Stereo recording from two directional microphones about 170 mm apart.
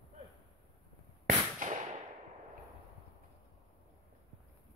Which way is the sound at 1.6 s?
50° right (ahead or behind).